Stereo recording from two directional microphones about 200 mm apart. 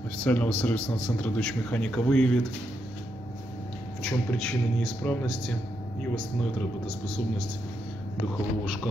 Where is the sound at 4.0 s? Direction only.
Centre (ahead or behind).